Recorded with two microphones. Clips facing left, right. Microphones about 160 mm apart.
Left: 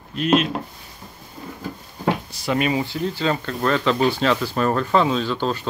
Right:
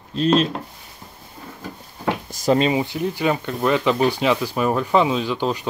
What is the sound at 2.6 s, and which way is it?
Speech, 20° right (ahead or behind).